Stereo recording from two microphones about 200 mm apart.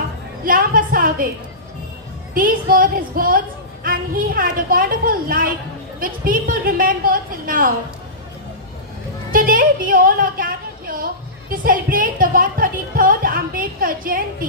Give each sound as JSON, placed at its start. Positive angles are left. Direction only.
{"t": 0.4, "sound": "a woman's voice", "side_deg": -45}
{"t": 2.3, "sound": "a woman's voice", "side_deg": -45}
{"t": 9.3, "sound": "a woman's voice", "side_deg": -45}